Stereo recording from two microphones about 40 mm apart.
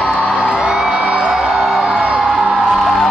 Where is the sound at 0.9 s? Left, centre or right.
Right.